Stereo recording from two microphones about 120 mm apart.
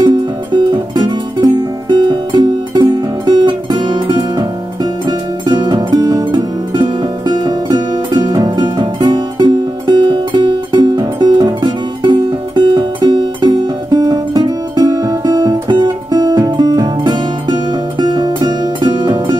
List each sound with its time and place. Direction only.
0.0 s music: 40° right (ahead or behind)